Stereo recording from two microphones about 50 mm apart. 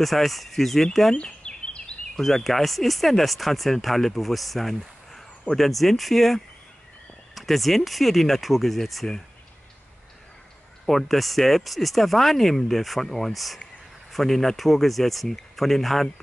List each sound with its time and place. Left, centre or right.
0.0 s speech: centre
1.1 s a sound: left
2.1 s speech: centre
10.9 s speech: centre